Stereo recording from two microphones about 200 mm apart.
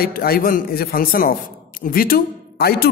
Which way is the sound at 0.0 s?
50° left (ahead or behind).